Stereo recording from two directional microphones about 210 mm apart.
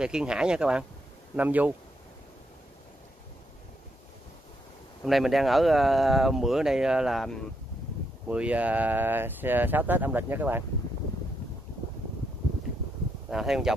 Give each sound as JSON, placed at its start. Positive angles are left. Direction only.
{"t": 0.0, "sound": "speech", "side_deg": -5}
{"t": 5.0, "sound": "speech", "side_deg": 0}
{"t": 13.3, "sound": "speech", "side_deg": 0}